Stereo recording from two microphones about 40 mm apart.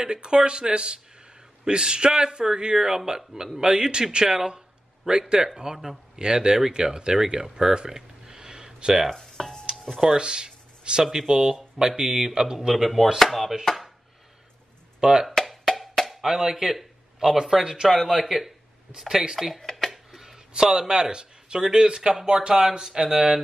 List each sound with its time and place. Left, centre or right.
0.0 s speech: right
7.7 s a sound: centre
9.1 s stir: centre
10.1 s speech: right
12.6 s speech: centre
15.0 s speech: centre
15.7 s music: centre
16.6 s a sound: centre
17.4 s speech: centre
19.6 s a sound: centre
20.5 s speech: centre